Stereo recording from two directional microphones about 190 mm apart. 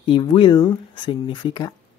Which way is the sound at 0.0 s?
25° left (ahead or behind).